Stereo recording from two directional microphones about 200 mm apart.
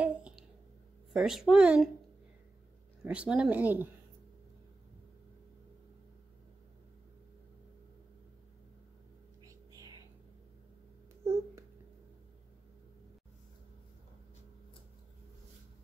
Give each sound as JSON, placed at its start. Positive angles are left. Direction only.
{"t": 0.0, "sound": "a sound", "side_deg": -5}
{"t": 1.1, "sound": "speech", "side_deg": 0}
{"t": 3.0, "sound": "speech", "side_deg": -5}
{"t": 9.4, "sound": "whispering", "side_deg": -15}
{"t": 11.2, "sound": "babbling", "side_deg": -10}